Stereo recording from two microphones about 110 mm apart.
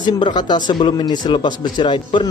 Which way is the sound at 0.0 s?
40° left (ahead or behind).